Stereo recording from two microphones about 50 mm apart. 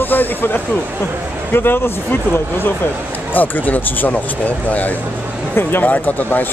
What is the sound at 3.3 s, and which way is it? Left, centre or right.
Speech, left.